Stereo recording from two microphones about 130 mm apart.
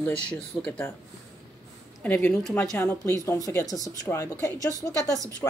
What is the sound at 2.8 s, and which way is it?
A woman's voice, 20° left (ahead or behind).